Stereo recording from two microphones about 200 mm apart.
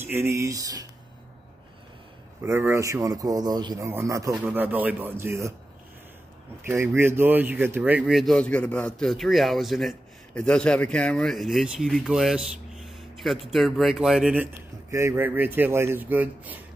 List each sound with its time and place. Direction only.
0.0 s a man's voice: 10° right (ahead or behind)
2.4 s a man's voice: 15° right (ahead or behind)
6.6 s a man's voice: 10° right (ahead or behind)